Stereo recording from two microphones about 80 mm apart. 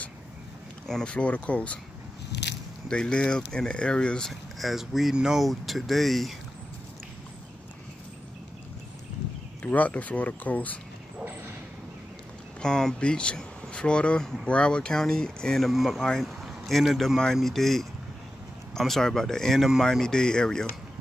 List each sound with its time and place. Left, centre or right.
0.8 s speech: centre
2.9 s speech: centre
4.3 s speech: centre
9.6 s speech: centre
11.1 s a sound: right
12.6 s speech: centre